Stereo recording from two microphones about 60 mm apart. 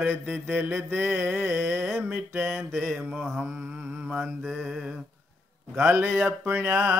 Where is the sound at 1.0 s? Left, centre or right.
Right.